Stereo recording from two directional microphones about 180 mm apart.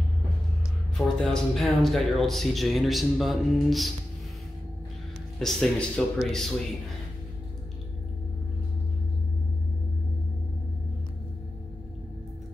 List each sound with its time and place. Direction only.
0.9 s speech: 5° left (ahead or behind)
5.4 s speech: centre (ahead or behind)